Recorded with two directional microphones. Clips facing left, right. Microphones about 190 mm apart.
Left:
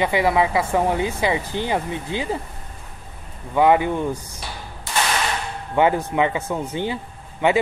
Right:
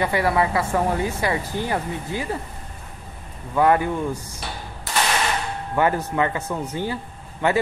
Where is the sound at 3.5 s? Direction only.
15° left (ahead or behind).